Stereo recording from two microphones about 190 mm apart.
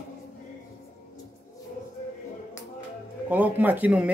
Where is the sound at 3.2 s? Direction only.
10° right (ahead or behind).